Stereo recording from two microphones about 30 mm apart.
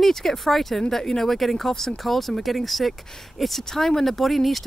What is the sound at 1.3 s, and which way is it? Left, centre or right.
Speech, centre.